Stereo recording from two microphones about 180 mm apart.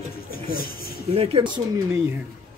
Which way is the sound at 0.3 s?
55° left (ahead or behind).